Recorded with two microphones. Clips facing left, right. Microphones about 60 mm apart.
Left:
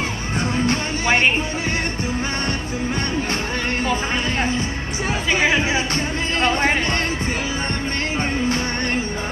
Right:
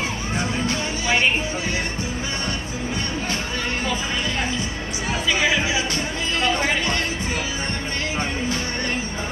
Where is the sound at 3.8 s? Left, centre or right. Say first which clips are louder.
Left 3 dB; left.